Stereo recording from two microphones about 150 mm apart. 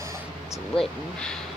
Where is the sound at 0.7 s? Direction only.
5° left (ahead or behind).